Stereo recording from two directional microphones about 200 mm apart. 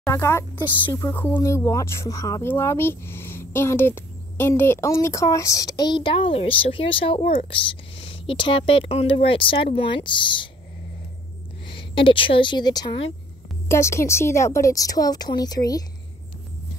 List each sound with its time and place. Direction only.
0.0 s speech: 15° left (ahead or behind)
11.6 s a woman's voice: 25° left (ahead or behind)